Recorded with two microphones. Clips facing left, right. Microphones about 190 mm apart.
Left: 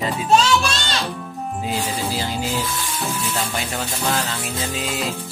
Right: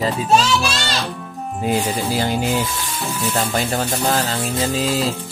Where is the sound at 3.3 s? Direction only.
40° right (ahead or behind).